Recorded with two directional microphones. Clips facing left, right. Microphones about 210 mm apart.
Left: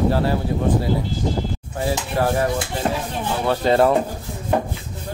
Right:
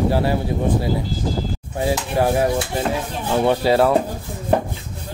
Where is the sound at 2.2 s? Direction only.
15° right (ahead or behind).